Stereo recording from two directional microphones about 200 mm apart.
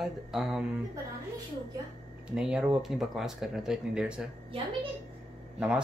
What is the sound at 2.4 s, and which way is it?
Speech, 5° right (ahead or behind).